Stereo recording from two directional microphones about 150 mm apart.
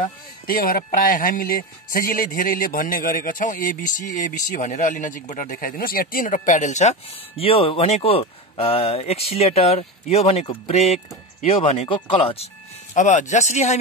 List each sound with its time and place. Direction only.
0.5 s speech: 80° left; by 12.4 s 35° left (ahead or behind)
12.9 s speech: 55° left (ahead or behind)